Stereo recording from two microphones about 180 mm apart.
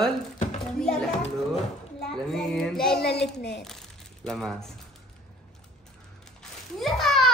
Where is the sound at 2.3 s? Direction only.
5° left (ahead or behind).